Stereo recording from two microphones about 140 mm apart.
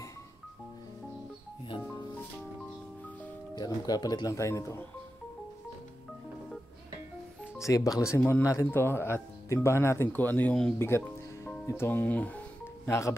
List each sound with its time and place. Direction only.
3.5 s speech: 30° left (ahead or behind)
7.6 s speech: 25° left (ahead or behind); by 10.7 s 10° left (ahead or behind)
10.8 s music: 15° left (ahead or behind)
11.6 s speech: 20° left (ahead or behind)